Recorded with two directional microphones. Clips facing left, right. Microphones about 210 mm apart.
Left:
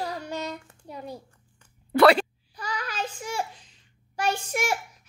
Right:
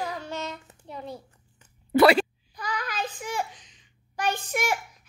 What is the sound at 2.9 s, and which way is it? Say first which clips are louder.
Child singing: even; 10° left (ahead or behind).